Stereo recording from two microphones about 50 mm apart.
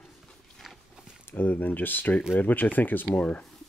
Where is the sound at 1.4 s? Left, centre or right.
Left.